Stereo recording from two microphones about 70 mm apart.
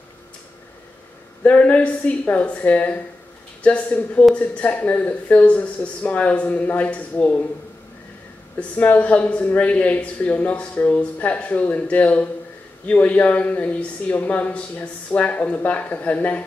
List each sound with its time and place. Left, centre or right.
1.4 s speech: centre
8.5 s speech: left